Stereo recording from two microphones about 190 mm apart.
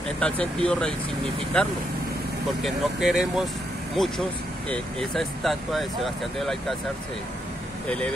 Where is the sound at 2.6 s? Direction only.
Centre (ahead or behind).